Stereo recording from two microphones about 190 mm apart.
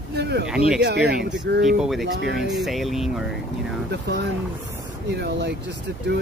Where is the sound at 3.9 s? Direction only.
60° right (ahead or behind).